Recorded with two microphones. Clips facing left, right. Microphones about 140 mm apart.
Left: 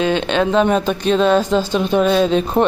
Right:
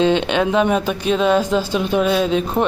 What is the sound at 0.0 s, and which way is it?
Speech, 20° right (ahead or behind).